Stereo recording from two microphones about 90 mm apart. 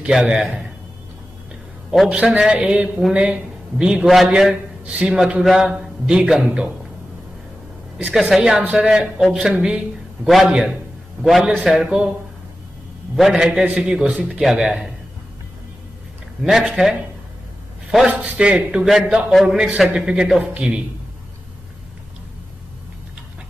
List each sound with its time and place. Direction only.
0.0 s a man's voice: 5° right (ahead or behind)
1.9 s a man's voice: 10° right (ahead or behind)
8.1 s a man's voice: 5° right (ahead or behind)
13.1 s a man's voice: 5° right (ahead or behind)
16.4 s a man's voice: 5° right (ahead or behind)